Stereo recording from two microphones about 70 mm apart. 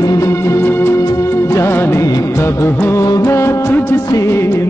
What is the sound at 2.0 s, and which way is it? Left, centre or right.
Music of bollywood, left.